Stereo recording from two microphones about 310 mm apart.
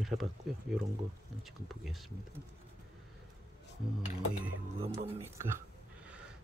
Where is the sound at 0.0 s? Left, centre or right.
Centre.